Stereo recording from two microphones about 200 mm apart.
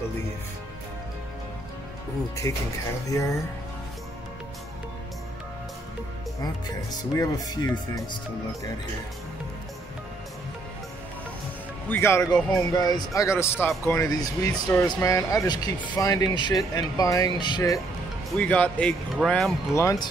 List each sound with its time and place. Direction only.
2.4 s speech: 15° left (ahead or behind)
7.2 s speech: 20° left (ahead or behind)
11.9 s speech: 15° left (ahead or behind)
18.4 s speech: 5° left (ahead or behind)
19.7 s speech: 15° left (ahead or behind)